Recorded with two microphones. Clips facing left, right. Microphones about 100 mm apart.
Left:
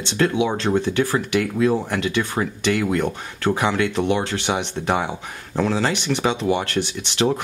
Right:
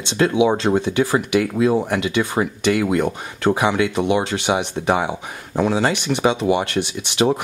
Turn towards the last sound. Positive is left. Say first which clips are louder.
# right 2 dB
turn(degrees=-15)  # may be behind; listen again after turning